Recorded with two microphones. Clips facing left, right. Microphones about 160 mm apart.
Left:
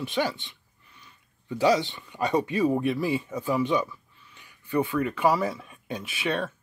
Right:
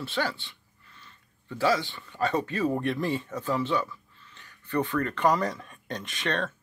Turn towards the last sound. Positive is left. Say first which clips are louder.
# left 2 dB
turn(degrees=10)  # may be behind; listen again after turning